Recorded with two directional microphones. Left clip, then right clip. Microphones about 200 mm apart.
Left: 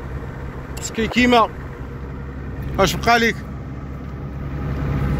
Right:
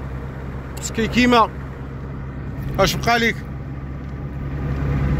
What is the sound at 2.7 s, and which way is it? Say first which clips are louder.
Speech: left 2 dB; 15° left (ahead or behind).